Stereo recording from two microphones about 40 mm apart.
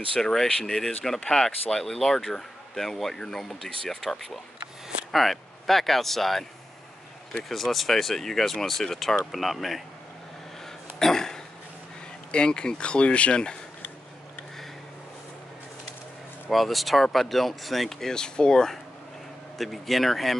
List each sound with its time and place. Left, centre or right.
0.1 s speech: centre
7.4 s speech: centre
11.0 s a sound: centre
12.3 s speech: left
16.4 s speech: centre
18.1 s speech: centre
19.6 s speech: centre